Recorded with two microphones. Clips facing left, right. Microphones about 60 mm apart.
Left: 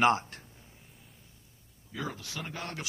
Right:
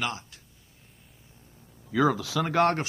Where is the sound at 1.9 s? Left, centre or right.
Right.